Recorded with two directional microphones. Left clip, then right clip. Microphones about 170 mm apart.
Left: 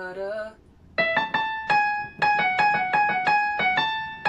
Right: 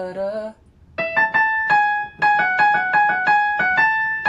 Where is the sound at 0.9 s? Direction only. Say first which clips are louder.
Right 5 dB; 20° left (ahead or behind).